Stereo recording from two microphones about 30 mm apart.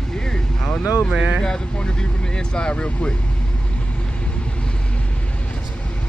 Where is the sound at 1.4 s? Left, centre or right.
Left.